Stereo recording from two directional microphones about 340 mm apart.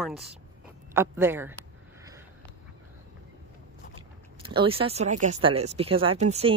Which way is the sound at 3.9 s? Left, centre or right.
Centre.